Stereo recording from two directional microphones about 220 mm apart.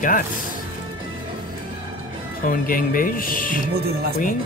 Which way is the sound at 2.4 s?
40° left (ahead or behind).